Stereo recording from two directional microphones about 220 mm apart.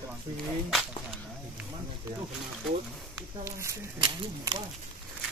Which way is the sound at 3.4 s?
15° right (ahead or behind).